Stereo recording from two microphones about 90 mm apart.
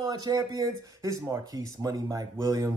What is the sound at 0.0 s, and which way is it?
Speech, 45° right (ahead or behind).